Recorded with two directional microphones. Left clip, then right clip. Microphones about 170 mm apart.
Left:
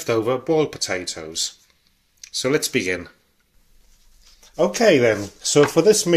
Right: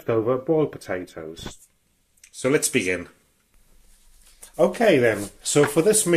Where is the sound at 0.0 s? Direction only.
15° left (ahead or behind).